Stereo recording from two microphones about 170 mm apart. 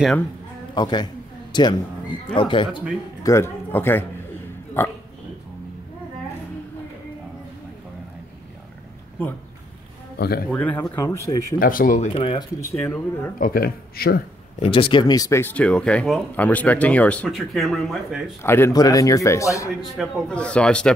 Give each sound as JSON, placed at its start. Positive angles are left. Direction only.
{"t": 0.7, "sound": "speech", "side_deg": 25}
{"t": 3.3, "sound": "a man's voice", "side_deg": 15}
{"t": 10.1, "sound": "speech", "side_deg": 65}
{"t": 10.5, "sound": "speech", "side_deg": 10}
{"t": 11.6, "sound": "speech", "side_deg": 55}
{"t": 12.1, "sound": "speech", "side_deg": 30}
{"t": 12.8, "sound": "speech", "side_deg": 10}
{"t": 13.4, "sound": "speech", "side_deg": 60}
{"t": 14.6, "sound": "speech", "side_deg": 30}
{"t": 18.4, "sound": "speech", "side_deg": 15}
{"t": 20.0, "sound": "speech", "side_deg": 5}